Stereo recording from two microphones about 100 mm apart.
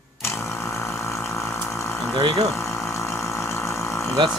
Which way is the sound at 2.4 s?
25° left (ahead or behind).